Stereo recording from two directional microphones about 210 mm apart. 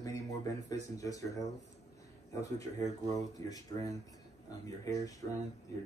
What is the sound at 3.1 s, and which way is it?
Speech, 15° left (ahead or behind).